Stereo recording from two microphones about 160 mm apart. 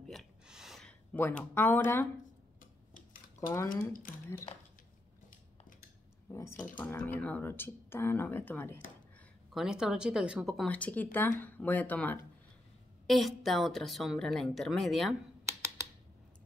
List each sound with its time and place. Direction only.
0.1 s gasp: centre (ahead or behind)
1.5 s speech: 15° left (ahead or behind)
3.3 s speech: 20° left (ahead or behind)
6.3 s speech: 15° left (ahead or behind)
9.5 s a woman's voice: 5° right (ahead or behind)